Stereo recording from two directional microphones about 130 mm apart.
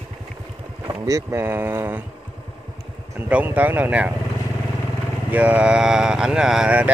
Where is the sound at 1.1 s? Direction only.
25° right (ahead or behind).